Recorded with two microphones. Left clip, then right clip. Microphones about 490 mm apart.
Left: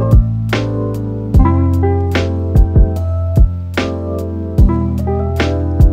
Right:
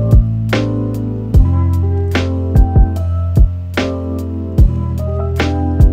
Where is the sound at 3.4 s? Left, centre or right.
Right.